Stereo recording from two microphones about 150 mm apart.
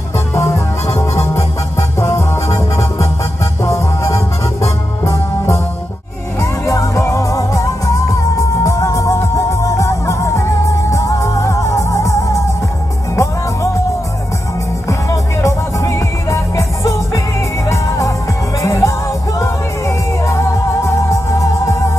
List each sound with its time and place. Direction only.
0.3 s music: 20° left (ahead or behind)
14.9 s music: 20° left (ahead or behind)